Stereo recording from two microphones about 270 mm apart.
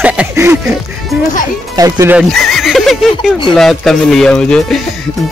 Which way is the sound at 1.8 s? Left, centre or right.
Centre.